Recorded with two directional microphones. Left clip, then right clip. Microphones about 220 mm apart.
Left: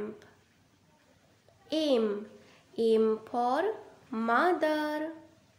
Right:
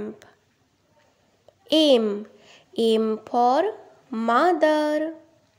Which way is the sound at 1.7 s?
35° right (ahead or behind).